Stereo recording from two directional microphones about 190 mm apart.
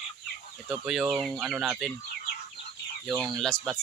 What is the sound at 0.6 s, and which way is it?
Speech, 5° right (ahead or behind).